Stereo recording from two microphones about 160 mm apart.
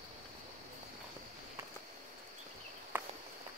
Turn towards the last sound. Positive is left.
turn(degrees=-15)  # may be behind; listen again after turning